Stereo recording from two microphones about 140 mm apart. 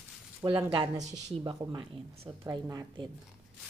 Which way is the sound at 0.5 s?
40° right (ahead or behind).